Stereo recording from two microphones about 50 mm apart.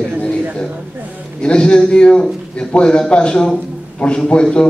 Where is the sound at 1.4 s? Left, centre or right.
Centre.